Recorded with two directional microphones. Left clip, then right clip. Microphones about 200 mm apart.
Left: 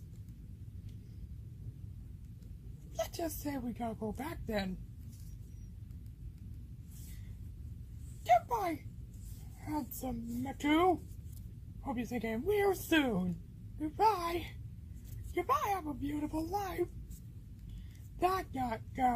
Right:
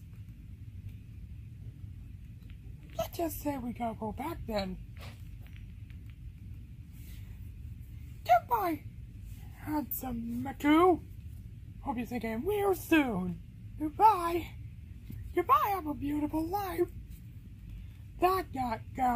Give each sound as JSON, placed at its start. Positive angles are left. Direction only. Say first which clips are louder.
{"t": 3.0, "sound": "a woman's voice", "louder": "right 3 dB", "side_deg": -10}
{"t": 8.3, "sound": "a sound", "louder": "right 3 dB", "side_deg": -15}
{"t": 9.7, "sound": "a woman's voice", "louder": "right 3 dB", "side_deg": -15}
{"t": 18.2, "sound": "a woman's voice", "louder": "right 4 dB", "side_deg": -15}